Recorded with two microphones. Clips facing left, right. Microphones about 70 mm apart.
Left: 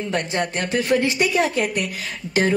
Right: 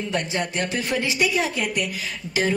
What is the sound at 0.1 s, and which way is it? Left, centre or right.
Speech, left.